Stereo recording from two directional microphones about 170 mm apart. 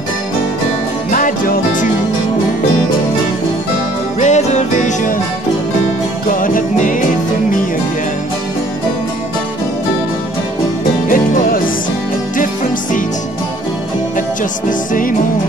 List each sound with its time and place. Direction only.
1.1 s music: 55° left (ahead or behind)
4.2 s music: 40° left (ahead or behind)
6.3 s music: 55° left (ahead or behind)
11.1 s music: 55° left (ahead or behind)
14.7 s music: 55° left (ahead or behind)